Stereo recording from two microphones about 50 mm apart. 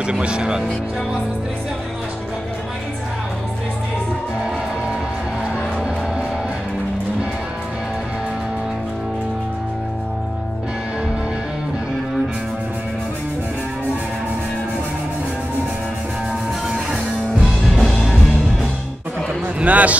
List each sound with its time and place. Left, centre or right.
0.0 s speech: centre
16.6 s music: centre
17.7 s music: centre
19.6 s speech: right